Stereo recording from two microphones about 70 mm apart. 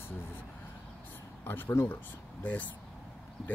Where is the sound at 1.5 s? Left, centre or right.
Left.